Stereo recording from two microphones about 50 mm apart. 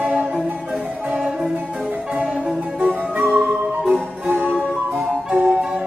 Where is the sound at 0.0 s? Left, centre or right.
Right.